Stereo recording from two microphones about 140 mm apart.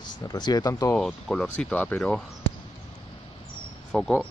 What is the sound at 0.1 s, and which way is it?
Speech, 30° left (ahead or behind).